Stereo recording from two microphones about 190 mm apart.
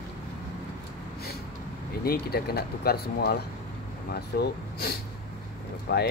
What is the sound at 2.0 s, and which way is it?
Speech, 55° left (ahead or behind).